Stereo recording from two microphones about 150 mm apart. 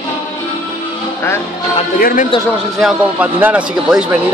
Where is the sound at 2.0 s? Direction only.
75° left (ahead or behind).